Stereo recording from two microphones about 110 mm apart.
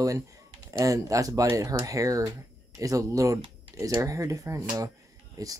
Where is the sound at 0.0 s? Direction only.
30° right (ahead or behind).